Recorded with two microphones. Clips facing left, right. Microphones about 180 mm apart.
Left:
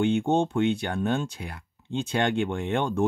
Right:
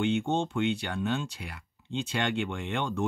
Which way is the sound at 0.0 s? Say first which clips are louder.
Left 5 dB; 50° left (ahead or behind).